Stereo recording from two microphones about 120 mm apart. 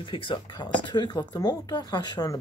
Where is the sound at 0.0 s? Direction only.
45° left (ahead or behind).